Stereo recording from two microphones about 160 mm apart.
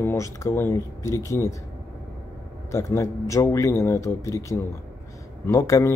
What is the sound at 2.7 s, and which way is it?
Speech, 15° left (ahead or behind).